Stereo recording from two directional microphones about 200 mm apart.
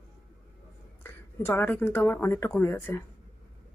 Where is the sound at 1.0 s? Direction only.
10° left (ahead or behind).